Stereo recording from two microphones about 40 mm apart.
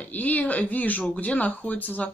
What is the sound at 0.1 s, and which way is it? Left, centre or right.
Speech, left.